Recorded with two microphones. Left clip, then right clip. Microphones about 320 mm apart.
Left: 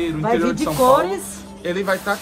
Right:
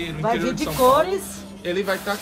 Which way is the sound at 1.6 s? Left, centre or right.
Centre.